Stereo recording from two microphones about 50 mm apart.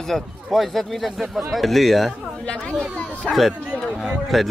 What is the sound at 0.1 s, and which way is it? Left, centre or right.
Speech, centre.